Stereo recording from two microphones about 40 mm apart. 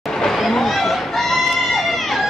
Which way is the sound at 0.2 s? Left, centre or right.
Centre.